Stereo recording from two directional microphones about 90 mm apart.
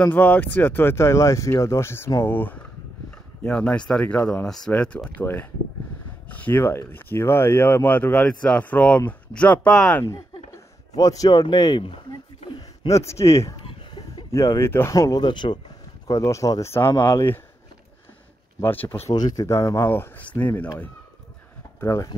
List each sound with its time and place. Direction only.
0.0 s speech: 20° left (ahead or behind)
2.2 s speech: 20° left (ahead or behind)
4.5 s speech: 10° left (ahead or behind)
11.0 s speech: 40° left (ahead or behind)
12.8 s speech: 35° left (ahead or behind)
15.1 s speech: 55° left (ahead or behind)
16.1 s speech: 35° left (ahead or behind)
16.7 s speech: 25° left (ahead or behind)
18.6 s speech: 20° left (ahead or behind)
19.1 s speech: 45° left (ahead or behind)
19.9 s speech: 20° left (ahead or behind)
21.8 s speech: 40° left (ahead or behind)